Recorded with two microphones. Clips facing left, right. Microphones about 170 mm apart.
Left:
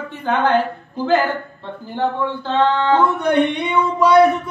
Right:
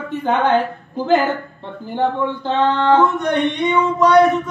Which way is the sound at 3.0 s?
10° left (ahead or behind).